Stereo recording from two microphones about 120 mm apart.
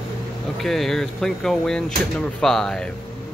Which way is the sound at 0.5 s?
Centre (ahead or behind).